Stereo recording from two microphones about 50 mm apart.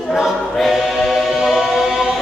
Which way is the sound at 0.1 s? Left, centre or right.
Centre.